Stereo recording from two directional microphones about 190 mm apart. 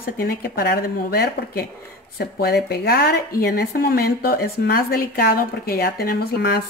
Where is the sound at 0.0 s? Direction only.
50° left (ahead or behind).